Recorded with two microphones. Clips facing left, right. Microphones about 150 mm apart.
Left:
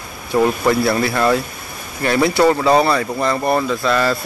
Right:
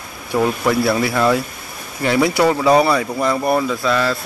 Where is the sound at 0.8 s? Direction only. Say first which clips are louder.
Even; 5° right (ahead or behind).